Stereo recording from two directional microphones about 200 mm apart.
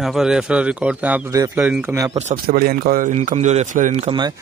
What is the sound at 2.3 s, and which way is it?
Speech, 50° right (ahead or behind).